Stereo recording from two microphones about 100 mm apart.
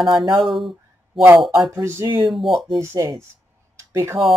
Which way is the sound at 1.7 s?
25° right (ahead or behind).